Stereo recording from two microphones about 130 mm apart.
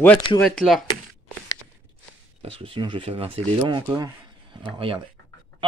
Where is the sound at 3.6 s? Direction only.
35° right (ahead or behind).